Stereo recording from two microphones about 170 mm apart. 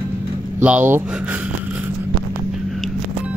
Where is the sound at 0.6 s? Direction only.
10° right (ahead or behind).